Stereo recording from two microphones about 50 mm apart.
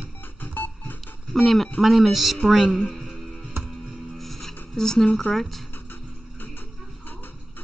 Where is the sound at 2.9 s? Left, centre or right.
Centre.